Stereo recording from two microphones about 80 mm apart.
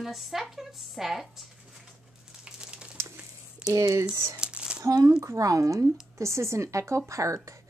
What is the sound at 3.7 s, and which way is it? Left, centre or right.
Speech, right.